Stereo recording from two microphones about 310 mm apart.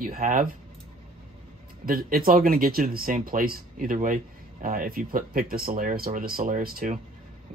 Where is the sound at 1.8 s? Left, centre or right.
Right.